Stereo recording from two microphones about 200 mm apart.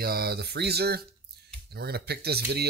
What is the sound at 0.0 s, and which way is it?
Speech, 50° right (ahead or behind).